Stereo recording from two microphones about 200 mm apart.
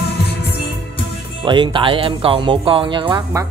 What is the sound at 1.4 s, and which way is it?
Speech, 25° right (ahead or behind).